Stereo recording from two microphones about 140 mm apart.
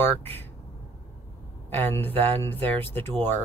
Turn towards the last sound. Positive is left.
turn(degrees=15)  # may be behind; listen again after turning